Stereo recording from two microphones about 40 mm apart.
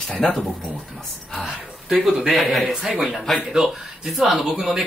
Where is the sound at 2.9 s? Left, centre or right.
Centre.